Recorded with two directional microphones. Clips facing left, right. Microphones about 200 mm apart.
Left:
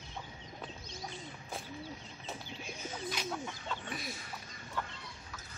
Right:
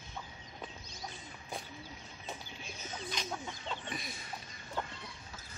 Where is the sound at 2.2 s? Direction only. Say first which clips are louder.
Left 2 dB; 5° left (ahead or behind).